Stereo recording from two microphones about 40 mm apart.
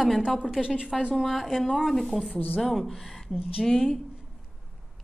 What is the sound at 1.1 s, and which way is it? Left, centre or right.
Speech, centre.